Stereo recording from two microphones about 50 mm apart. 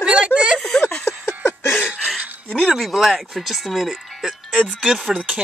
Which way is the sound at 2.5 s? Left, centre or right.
Centre.